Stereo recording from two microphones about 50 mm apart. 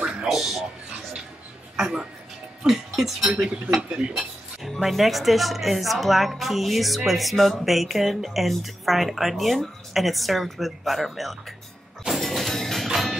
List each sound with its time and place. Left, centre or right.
0.0 s music: centre
0.3 s speech: centre
2.6 s music: centre
3.3 s speech: centre
12.2 s music: centre